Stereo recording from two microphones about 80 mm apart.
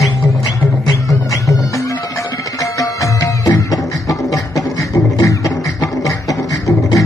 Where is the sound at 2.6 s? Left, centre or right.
Left.